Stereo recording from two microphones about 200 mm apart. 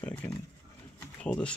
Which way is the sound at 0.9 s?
5° left (ahead or behind).